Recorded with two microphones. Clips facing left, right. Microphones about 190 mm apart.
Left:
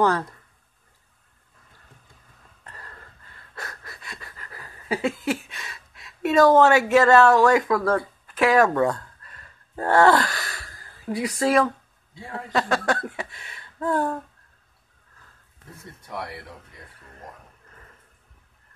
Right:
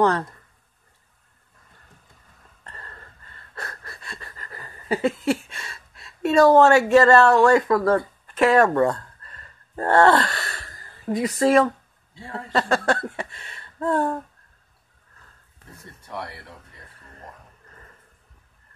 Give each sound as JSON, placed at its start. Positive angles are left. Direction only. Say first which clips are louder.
{"t": 0.0, "sound": "speech", "louder": "right 1 dB", "side_deg": 5}
{"t": 2.6, "sound": "a sound", "louder": "right 1 dB", "side_deg": 5}
{"t": 3.5, "sound": "wheeze", "louder": "right 1 dB", "side_deg": 5}
{"t": 6.9, "sound": "speech", "louder": "right 1 dB", "side_deg": 5}
{"t": 12.1, "sound": "a man's voice", "louder": "even", "side_deg": 15}
{"t": 12.5, "sound": "speech", "louder": "right 2 dB", "side_deg": 0}
{"t": 16.1, "sound": "speech", "louder": "even", "side_deg": 10}